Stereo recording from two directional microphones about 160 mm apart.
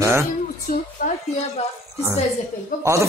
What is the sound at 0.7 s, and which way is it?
Speech, 65° left (ahead or behind).